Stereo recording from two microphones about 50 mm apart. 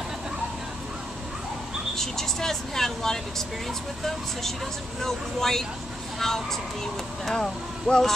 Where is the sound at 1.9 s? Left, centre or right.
Centre.